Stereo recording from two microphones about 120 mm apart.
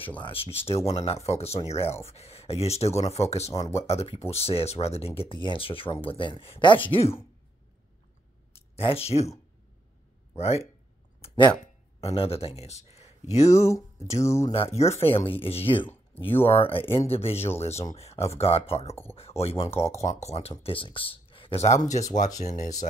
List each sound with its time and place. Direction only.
0.2 s speech: 50° left (ahead or behind)
3.5 s speech: 30° left (ahead or behind)
3.8 s speech: 60° left (ahead or behind)
8.5 s speech: 55° left (ahead or behind)
10.3 s speech: 60° left (ahead or behind)
11.2 s speech: 45° left (ahead or behind); by 13.5 s 65° left (ahead or behind)
13.5 s speech: 25° left (ahead or behind)
14.5 s speech: 60° left (ahead or behind)
20.0 s speech: 70° left (ahead or behind)
21.9 s speech: 85° left
22.4 s speech: 70° left (ahead or behind)